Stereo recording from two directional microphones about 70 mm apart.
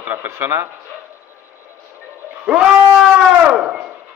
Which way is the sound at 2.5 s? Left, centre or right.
Centre.